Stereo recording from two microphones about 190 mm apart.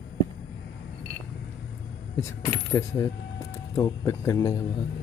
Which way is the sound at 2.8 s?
15° left (ahead or behind).